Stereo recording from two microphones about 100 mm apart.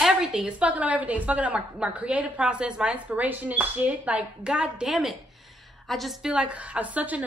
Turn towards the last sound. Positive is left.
turn(degrees=-15)  # may be behind; listen again after turning